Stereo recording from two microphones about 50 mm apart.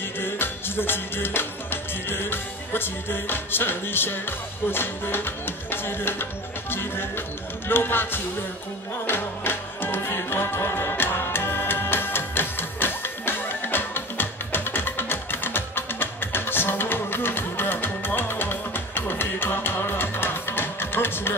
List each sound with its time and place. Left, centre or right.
0.2 s music: left
6.7 s speech: left
9.0 s music: left